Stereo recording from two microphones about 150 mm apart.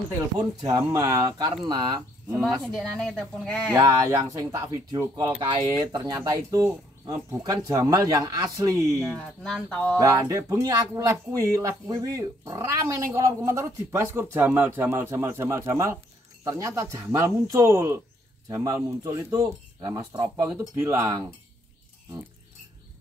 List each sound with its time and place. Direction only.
0.6 s speech: 25° right (ahead or behind)
2.6 s speech: centre (ahead or behind)
3.7 s speech: 20° right (ahead or behind)
9.0 s speech: 5° left (ahead or behind)
9.9 s speech: 20° right (ahead or behind)